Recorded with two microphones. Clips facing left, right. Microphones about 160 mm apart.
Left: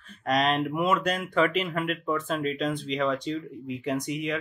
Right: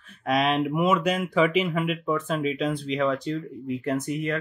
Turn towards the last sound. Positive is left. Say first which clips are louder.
# right 2 dB
turn(degrees=0)  # may be behind; listen again after turning